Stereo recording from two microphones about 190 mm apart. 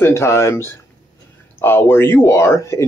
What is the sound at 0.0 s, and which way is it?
Speech, 15° left (ahead or behind).